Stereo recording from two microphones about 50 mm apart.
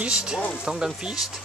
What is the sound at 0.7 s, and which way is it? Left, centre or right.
Speech, centre.